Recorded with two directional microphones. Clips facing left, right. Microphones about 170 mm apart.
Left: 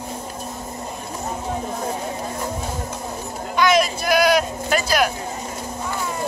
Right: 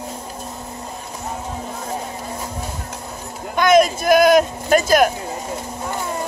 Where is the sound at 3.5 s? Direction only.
50° right (ahead or behind).